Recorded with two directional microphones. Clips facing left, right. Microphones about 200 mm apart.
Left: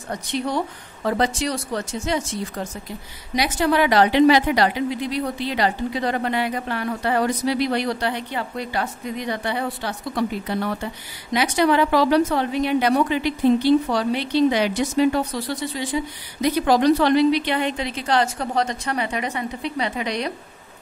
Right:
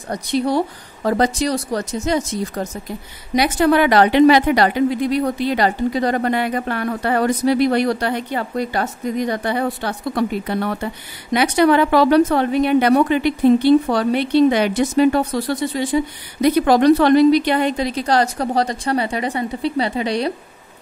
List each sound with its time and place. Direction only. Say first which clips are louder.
0.1 s a woman's voice: right 6 dB; 35° right (ahead or behind)
3.3 s a woman's voice: right 5 dB; 55° right (ahead or behind); by 20.3 s 30° right (ahead or behind)